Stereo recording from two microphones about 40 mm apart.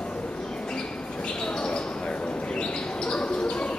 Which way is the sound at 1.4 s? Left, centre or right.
Left.